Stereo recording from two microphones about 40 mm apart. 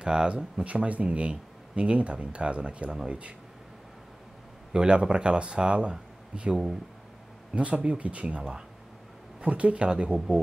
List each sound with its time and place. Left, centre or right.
0.0 s speech: centre
0.7 s speech: right
4.7 s speech: right
8.4 s speech: centre
9.4 s speech: right